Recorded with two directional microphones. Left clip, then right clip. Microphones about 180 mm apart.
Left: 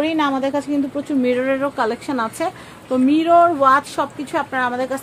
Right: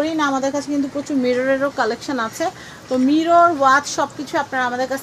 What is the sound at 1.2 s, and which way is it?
A woman's voice, 10° left (ahead or behind).